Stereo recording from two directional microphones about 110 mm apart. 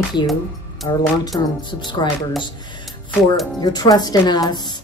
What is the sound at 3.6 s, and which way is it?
Speech, 35° left (ahead or behind).